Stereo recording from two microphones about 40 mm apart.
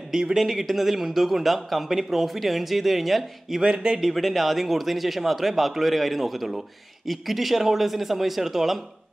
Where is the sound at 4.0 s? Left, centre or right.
Centre.